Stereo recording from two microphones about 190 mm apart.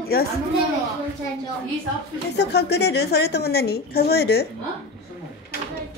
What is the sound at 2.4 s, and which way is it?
A woman's voice, 60° left (ahead or behind).